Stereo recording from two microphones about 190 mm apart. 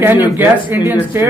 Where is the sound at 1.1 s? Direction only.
10° right (ahead or behind).